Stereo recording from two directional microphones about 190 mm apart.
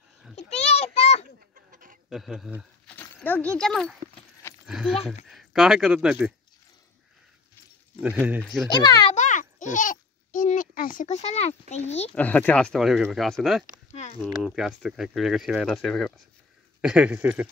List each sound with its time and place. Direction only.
0.4 s a sound: 35° left (ahead or behind)
1.5 s duck: 45° right (ahead or behind)
2.0 s speech: centre (ahead or behind)
2.9 s speech: 10° left (ahead or behind)
8.0 s speech: 5° right (ahead or behind)
8.6 s a child's voice: 20° left (ahead or behind)
9.1 s a sound: 40° left (ahead or behind)
12.1 s speech: 10° left (ahead or behind); by 17.5 s 10° right (ahead or behind)